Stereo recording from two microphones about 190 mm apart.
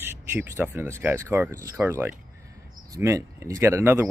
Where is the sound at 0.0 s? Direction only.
10° right (ahead or behind).